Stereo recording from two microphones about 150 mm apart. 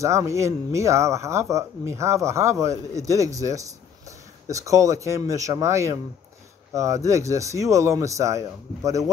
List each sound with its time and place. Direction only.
0.0 s speech: 20° right (ahead or behind)